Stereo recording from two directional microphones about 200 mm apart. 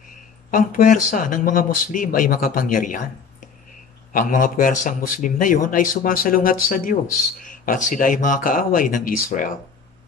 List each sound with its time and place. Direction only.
0.5 s a man's voice: 45° left (ahead or behind)
4.1 s a man's voice: 40° left (ahead or behind)